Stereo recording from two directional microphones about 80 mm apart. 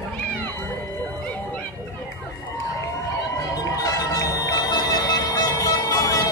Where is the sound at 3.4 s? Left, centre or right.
Left.